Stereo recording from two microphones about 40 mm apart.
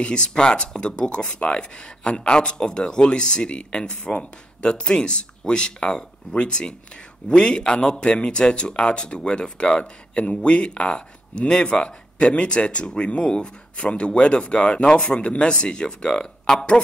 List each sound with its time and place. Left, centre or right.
0.0 s speech: left